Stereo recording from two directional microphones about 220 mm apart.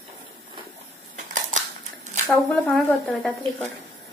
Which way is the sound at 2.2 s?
5° left (ahead or behind).